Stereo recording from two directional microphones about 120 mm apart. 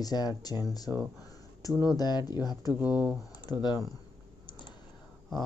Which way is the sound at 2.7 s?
10° right (ahead or behind).